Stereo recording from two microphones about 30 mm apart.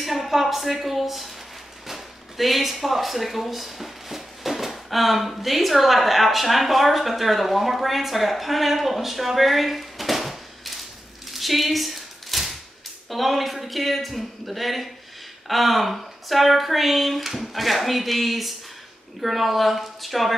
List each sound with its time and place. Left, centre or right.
0.0 s speech: centre
11.3 s a sound: centre
13.1 s speech: centre